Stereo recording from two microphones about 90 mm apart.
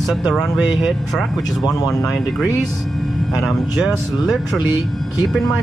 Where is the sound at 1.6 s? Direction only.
40° left (ahead or behind).